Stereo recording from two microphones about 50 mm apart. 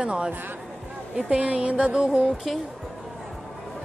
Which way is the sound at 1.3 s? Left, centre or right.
Right.